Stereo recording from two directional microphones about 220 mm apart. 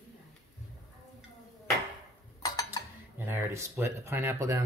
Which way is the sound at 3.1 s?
10° right (ahead or behind).